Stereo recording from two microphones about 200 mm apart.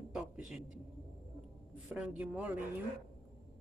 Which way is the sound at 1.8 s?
5° right (ahead or behind).